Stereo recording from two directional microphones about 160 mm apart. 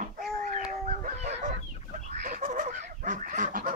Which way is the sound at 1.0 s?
45° right (ahead or behind).